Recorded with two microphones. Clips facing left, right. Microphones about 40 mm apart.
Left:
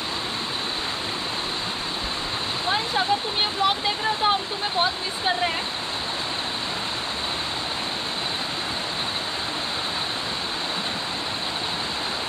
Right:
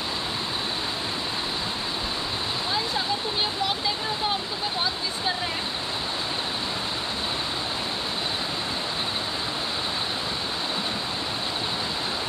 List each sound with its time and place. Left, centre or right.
2.7 s waterfall: left
3.6 s speech: left